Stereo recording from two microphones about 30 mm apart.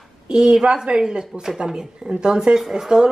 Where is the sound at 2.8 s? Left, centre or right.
Centre.